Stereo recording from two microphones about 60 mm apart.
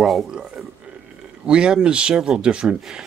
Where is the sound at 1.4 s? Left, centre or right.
Centre.